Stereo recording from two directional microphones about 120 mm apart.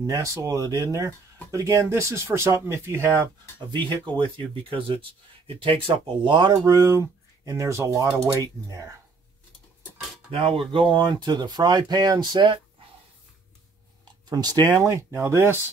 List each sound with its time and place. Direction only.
0.0 s speech: 25° right (ahead or behind)
3.7 s speech: 40° right (ahead or behind)
6.6 s speech: 25° right (ahead or behind)
10.3 s speech: 50° right (ahead or behind)
14.3 s speech: 35° right (ahead or behind)